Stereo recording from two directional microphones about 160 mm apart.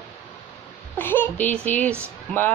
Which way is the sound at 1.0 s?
10° left (ahead or behind).